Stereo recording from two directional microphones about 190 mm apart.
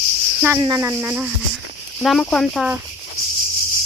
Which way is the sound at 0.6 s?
15° right (ahead or behind).